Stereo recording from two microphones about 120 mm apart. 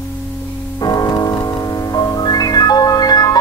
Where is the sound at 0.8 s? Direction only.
30° left (ahead or behind).